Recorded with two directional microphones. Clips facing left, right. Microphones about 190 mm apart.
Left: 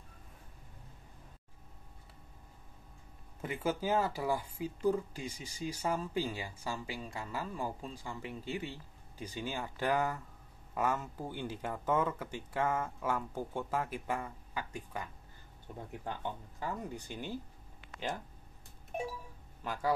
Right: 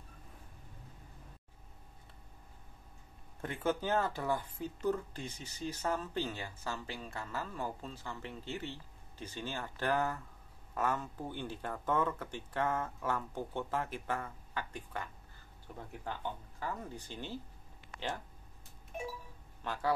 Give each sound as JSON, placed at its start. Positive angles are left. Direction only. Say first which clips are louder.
{"t": 3.3, "sound": "speech", "louder": "even", "side_deg": 10}
{"t": 19.6, "sound": "speech", "louder": "left 1 dB", "side_deg": 10}